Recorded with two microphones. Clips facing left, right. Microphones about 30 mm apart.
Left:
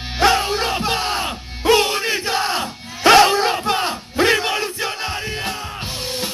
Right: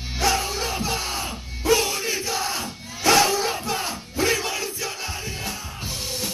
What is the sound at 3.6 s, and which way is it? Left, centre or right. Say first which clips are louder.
Battle cry: left 7 dB; left.